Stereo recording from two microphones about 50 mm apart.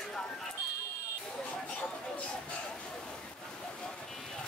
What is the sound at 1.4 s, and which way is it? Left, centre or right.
Chatter, left.